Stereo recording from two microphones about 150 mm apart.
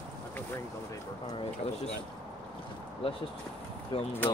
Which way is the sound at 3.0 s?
40° left (ahead or behind).